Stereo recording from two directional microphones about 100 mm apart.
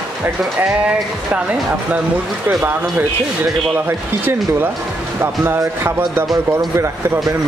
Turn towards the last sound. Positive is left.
turn(degrees=-30)  # may be behind; listen again after turning